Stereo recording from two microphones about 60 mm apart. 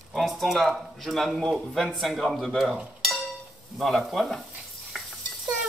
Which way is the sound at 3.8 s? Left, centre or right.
Centre.